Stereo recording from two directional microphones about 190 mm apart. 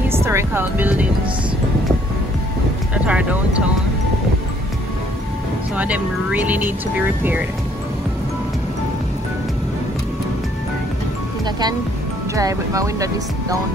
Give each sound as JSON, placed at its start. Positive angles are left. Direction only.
{"t": 0.1, "sound": "music", "side_deg": -15}
{"t": 2.9, "sound": "a sound", "side_deg": -5}
{"t": 5.8, "sound": "speech", "side_deg": -10}
{"t": 12.4, "sound": "speech", "side_deg": -15}